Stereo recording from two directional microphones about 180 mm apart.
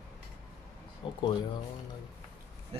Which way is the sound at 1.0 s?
30° left (ahead or behind).